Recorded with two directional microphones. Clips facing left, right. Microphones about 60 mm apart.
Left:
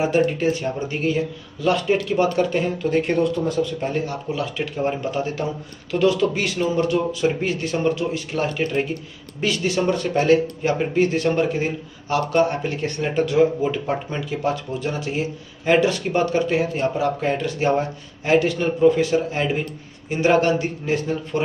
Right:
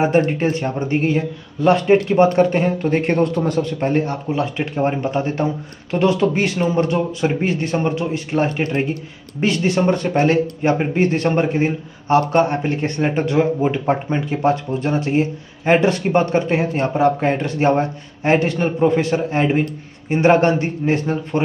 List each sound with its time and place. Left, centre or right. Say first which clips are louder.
0.0 s speech: right 3 dB; right